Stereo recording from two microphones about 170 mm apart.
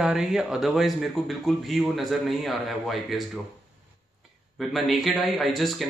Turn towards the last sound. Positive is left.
turn(degrees=0)  # may be behind; listen again after turning